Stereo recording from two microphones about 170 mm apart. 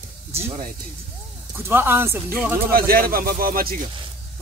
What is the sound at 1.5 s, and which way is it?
Speech, 10° right (ahead or behind).